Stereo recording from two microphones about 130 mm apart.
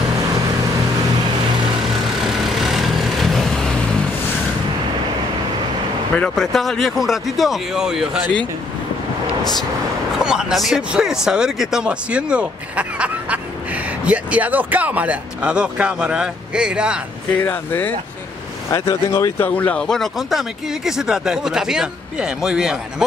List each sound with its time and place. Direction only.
2.2 s vehicle: centre (ahead or behind)
6.1 s speech: 5° left (ahead or behind)
10.1 s speech: 5° right (ahead or behind)
17.4 s speech: 15° left (ahead or behind); by 23.0 s 5° right (ahead or behind)